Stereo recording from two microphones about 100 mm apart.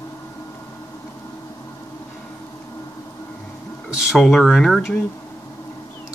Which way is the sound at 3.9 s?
Centre (ahead or behind).